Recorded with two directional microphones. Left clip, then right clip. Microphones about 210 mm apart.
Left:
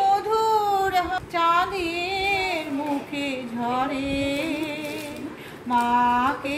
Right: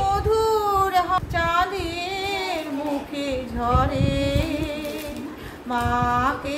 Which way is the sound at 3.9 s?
20° right (ahead or behind).